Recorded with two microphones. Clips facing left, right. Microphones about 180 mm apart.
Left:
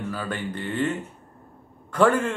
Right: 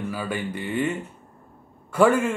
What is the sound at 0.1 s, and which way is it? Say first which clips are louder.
A man's voice: right 1 dB; 10° right (ahead or behind).